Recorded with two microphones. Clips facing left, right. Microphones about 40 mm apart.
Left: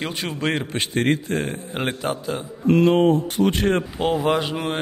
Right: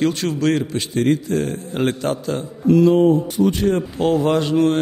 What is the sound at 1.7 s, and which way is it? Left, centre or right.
Speech, centre.